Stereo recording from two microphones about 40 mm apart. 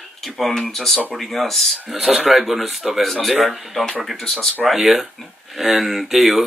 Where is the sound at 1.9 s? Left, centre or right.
Centre.